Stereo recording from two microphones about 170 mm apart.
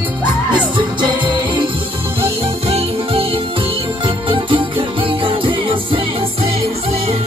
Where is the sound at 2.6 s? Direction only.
35° right (ahead or behind).